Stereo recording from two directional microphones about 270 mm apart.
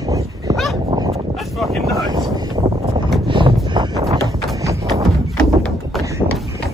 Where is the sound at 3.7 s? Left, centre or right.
Centre.